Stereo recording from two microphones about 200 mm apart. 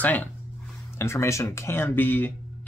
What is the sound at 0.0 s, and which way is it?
Speech, 10° left (ahead or behind).